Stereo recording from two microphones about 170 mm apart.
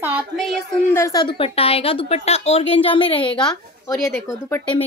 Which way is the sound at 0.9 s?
20° left (ahead or behind).